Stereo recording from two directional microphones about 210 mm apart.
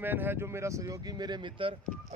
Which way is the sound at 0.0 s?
10° right (ahead or behind).